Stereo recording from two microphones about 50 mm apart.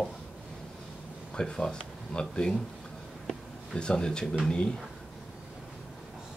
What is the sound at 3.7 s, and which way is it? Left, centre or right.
Speech, centre.